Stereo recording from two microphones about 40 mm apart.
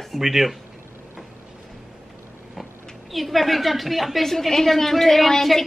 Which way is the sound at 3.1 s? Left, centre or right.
Centre.